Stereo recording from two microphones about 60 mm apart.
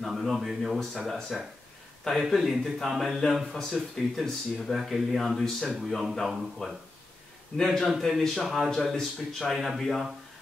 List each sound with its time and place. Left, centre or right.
0.0 s speech: centre